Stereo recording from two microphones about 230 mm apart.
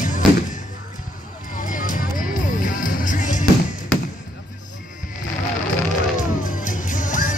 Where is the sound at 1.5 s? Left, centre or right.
Left.